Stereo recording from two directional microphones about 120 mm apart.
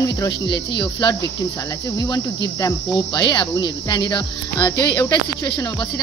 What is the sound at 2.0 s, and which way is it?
Speech, 35° left (ahead or behind).